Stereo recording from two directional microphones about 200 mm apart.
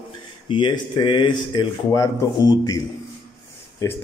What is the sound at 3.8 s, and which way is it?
Speech, 15° left (ahead or behind).